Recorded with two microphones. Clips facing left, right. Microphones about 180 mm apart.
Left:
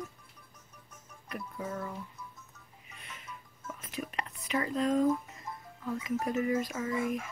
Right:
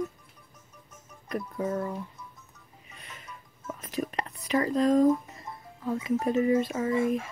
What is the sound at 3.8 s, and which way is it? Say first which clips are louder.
Whispering: right 6 dB; 40° right (ahead or behind).